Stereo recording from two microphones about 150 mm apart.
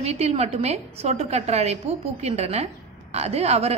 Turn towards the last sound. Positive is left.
turn(degrees=-45)  # may be behind; listen again after turning